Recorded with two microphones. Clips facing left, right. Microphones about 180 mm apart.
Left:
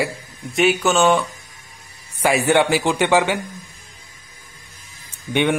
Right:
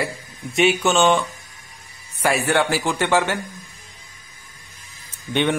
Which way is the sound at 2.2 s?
15° left (ahead or behind).